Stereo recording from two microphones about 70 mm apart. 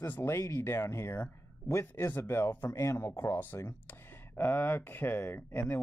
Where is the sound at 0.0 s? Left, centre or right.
Left.